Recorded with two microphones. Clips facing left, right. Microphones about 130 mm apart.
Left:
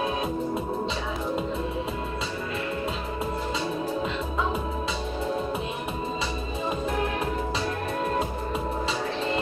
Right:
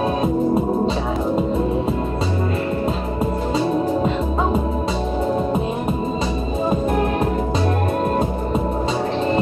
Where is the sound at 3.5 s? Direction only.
45° right (ahead or behind).